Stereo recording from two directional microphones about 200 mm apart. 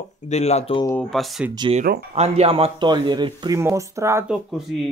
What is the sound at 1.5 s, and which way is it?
Speech, 25° right (ahead or behind).